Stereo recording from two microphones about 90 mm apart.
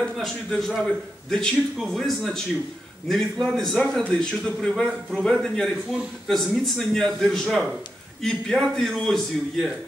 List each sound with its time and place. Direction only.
0.2 s a man's voice: 5° left (ahead or behind)